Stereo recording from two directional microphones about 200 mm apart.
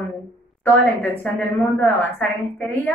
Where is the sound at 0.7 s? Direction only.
10° left (ahead or behind).